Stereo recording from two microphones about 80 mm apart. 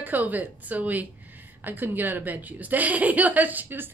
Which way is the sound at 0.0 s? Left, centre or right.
Right.